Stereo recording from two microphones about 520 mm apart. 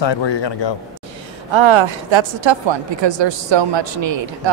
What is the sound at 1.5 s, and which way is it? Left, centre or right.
A woman's voice, right.